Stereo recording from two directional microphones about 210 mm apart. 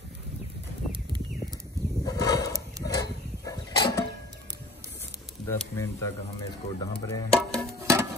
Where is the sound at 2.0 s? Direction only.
15° left (ahead or behind).